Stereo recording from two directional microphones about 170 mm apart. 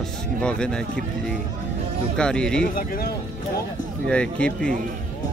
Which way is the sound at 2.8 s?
60° left (ahead or behind).